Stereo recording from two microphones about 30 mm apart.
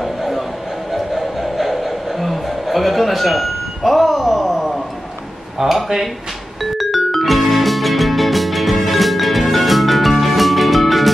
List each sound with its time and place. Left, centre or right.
0.0 s a sound: centre
0.9 s music: centre
5.6 s speech: right
6.6 s music: centre